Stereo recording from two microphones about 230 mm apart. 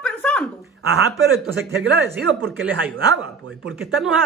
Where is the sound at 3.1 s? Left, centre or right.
Right.